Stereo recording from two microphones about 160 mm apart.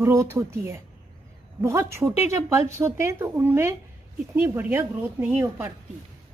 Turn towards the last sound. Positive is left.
turn(degrees=-10)  # may be behind; listen again after turning